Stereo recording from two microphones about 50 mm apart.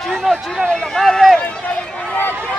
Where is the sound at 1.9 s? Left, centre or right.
Left.